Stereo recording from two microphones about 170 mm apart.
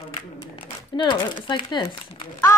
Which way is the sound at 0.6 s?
30° left (ahead or behind).